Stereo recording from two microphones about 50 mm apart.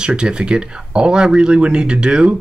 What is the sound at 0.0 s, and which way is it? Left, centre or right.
Speech, centre.